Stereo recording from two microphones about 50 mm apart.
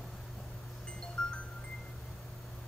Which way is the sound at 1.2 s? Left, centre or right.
Centre.